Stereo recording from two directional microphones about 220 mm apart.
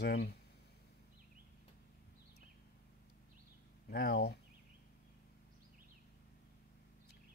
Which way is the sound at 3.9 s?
45° left (ahead or behind).